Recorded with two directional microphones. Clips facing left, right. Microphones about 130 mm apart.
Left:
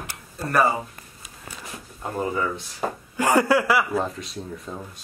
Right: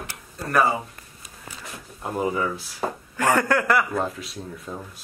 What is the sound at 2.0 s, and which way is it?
Speech, 5° right (ahead or behind).